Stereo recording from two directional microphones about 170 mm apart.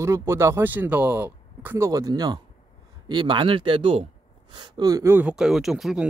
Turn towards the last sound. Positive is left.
turn(degrees=0)  # may be behind; listen again after turning